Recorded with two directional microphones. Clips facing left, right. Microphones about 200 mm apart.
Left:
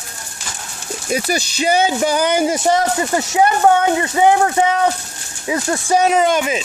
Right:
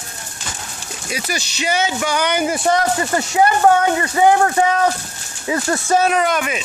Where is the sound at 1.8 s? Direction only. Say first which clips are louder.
Left 4 dB; 35° left (ahead or behind).